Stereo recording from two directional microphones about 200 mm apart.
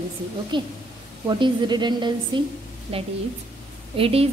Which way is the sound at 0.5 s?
25° right (ahead or behind).